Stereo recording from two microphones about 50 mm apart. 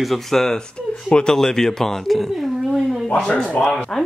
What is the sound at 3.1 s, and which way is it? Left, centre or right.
Speech, centre.